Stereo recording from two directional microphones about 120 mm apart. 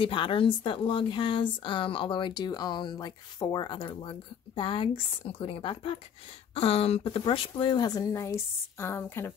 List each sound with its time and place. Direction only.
0.0 s speech: 45° left (ahead or behind); by 9.3 s 20° left (ahead or behind)